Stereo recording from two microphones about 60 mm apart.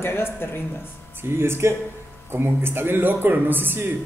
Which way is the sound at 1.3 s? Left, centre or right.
Right.